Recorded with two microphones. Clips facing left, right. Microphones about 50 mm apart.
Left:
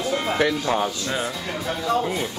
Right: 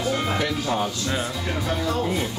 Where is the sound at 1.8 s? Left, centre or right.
Centre.